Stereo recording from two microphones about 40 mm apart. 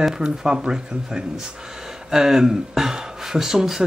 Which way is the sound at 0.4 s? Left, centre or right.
Centre.